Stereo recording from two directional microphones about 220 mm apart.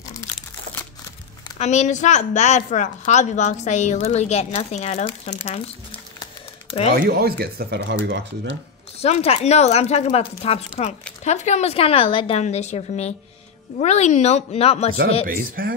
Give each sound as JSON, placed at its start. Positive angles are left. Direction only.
{"t": 1.6, "sound": "a woman's voice", "side_deg": 30}
{"t": 7.0, "sound": "speech", "side_deg": -45}
{"t": 9.0, "sound": "speech", "side_deg": 30}
{"t": 15.2, "sound": "speech", "side_deg": -40}